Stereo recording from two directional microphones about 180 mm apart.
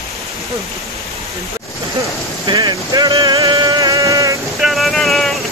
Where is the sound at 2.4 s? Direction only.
25° right (ahead or behind).